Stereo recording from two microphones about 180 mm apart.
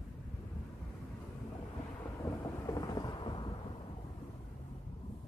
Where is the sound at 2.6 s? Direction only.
20° left (ahead or behind).